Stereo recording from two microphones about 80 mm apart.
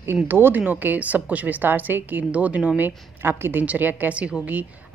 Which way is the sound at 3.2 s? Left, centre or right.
Right.